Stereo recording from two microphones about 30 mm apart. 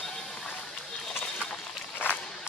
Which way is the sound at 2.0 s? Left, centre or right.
Left.